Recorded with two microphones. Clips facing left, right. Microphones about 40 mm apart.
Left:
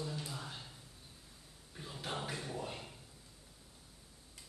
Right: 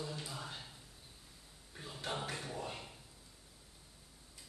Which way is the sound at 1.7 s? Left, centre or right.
Centre.